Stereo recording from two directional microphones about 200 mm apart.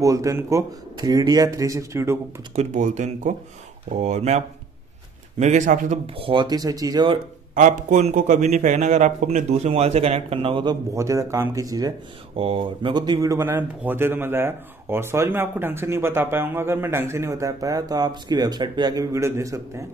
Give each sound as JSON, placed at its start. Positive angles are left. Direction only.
{"t": 0.0, "sound": "speech", "side_deg": -15}
{"t": 2.5, "sound": "a man's voice", "side_deg": -35}
{"t": 5.4, "sound": "a man's voice", "side_deg": -35}
{"t": 6.0, "sound": "speech", "side_deg": -30}
{"t": 7.5, "sound": "a man's voice", "side_deg": -40}